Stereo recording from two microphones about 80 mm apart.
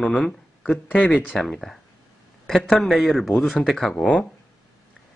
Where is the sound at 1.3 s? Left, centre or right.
Centre.